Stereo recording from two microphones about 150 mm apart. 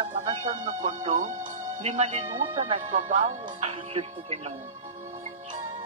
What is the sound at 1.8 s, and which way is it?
Speech, 40° right (ahead or behind).